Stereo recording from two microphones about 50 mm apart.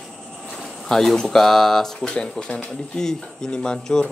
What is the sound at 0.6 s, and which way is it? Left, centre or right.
Speech, centre.